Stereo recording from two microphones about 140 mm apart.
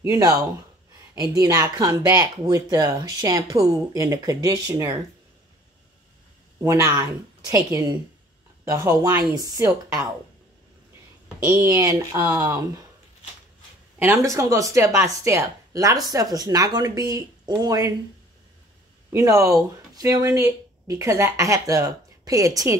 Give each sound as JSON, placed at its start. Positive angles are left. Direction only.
{"t": 0.0, "sound": "speech", "side_deg": -25}
{"t": 6.6, "sound": "speech", "side_deg": -25}
{"t": 11.3, "sound": "speech", "side_deg": -15}
{"t": 13.9, "sound": "speech", "side_deg": -15}
{"t": 19.0, "sound": "speech", "side_deg": -20}